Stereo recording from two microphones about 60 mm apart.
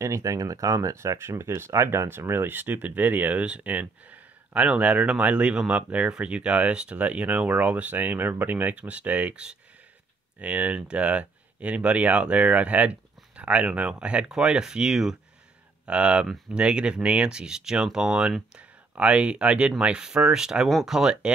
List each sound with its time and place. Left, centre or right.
0.0 s speech: right
0.9 s speech: right; by 21.3 s centre